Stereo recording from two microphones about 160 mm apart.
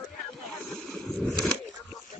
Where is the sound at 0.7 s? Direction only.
5° left (ahead or behind).